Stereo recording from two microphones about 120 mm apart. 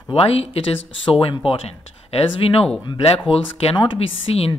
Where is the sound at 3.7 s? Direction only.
45° left (ahead or behind).